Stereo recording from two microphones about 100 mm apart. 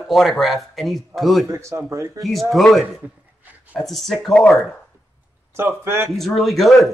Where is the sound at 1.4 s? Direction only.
30° right (ahead or behind).